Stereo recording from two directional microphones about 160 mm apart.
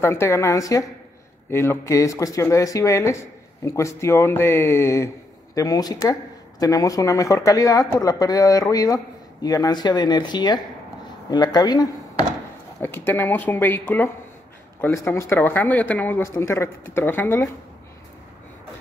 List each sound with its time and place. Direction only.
0.0 s speech: 15° left (ahead or behind)
12.8 s speech: 10° left (ahead or behind)